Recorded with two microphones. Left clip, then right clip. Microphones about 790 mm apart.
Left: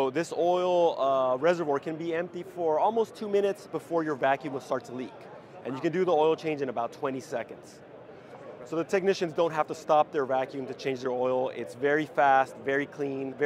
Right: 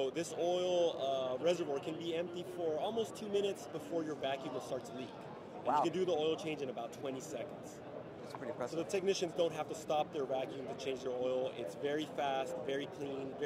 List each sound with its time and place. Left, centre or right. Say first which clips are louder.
0.0 s speech: left 10 dB; left
5.8 s speech: left 11 dB; left
8.7 s speech: left 11 dB; left